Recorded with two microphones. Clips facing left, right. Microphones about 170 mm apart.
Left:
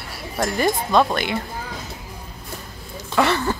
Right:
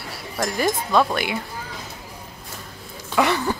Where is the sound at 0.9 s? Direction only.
5° right (ahead or behind).